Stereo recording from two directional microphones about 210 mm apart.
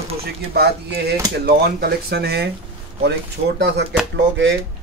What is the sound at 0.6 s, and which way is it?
Speech, 50° right (ahead or behind).